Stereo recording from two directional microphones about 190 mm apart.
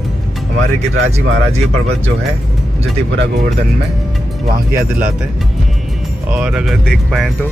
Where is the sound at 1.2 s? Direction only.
80° right.